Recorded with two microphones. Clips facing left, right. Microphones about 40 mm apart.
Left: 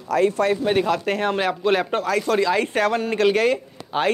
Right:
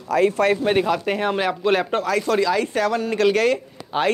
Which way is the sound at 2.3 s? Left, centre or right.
Left.